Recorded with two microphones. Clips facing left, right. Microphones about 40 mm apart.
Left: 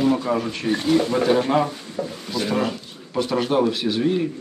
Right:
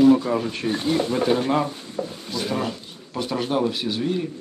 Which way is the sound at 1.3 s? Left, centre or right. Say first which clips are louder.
Left 2 dB; centre.